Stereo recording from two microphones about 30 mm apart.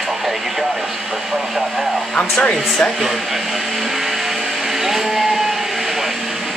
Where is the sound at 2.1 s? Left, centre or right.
Left.